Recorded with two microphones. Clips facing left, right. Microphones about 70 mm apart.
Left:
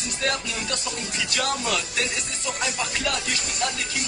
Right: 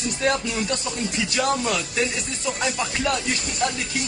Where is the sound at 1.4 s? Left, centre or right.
Centre.